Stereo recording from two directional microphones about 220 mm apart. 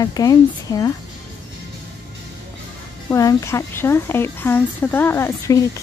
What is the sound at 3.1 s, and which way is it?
A woman's voice, 15° left (ahead or behind).